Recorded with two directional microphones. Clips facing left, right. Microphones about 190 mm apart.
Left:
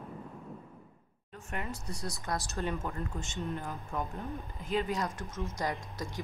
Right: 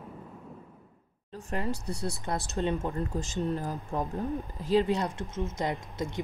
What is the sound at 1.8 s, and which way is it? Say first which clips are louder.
Speech: right 4 dB; 30° right (ahead or behind).